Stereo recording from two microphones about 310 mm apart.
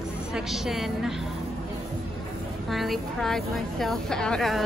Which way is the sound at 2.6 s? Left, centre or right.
Centre.